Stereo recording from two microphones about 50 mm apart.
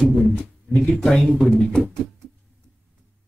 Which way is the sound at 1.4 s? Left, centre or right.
Centre.